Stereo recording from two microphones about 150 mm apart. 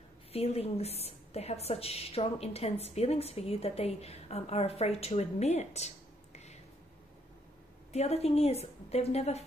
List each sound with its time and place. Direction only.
0.3 s a woman's voice: 45° left (ahead or behind)
7.9 s a woman's voice: 45° left (ahead or behind)